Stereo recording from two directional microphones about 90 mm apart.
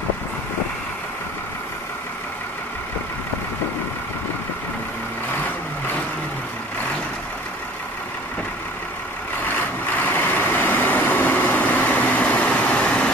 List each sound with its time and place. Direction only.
9.5 s vehicle: 20° left (ahead or behind)